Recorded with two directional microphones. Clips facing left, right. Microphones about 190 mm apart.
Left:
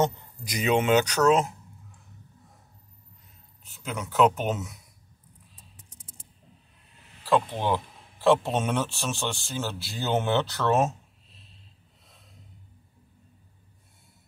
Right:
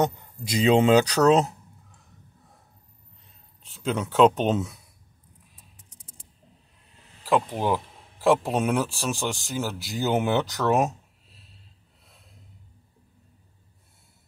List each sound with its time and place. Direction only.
0.0 s a man's voice: 25° right (ahead or behind)
3.6 s speech: 30° right (ahead or behind)
7.2 s speech: 10° right (ahead or behind)